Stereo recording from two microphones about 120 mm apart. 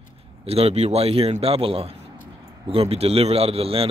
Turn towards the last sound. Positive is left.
turn(degrees=-50)  # may be behind; listen again after turning